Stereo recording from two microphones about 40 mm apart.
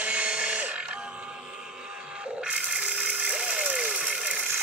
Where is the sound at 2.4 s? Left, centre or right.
Right.